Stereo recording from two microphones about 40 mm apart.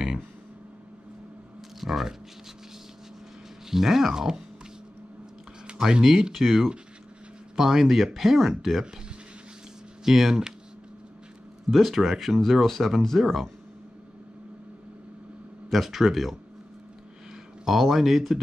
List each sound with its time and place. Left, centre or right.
1.8 s speech: centre
3.7 s speech: centre
5.8 s speech: centre
10.0 s speech: centre
11.7 s speech: centre
15.7 s speech: centre
17.6 s speech: centre